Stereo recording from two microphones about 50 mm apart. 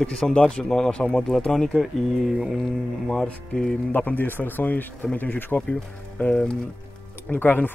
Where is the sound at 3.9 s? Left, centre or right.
Left.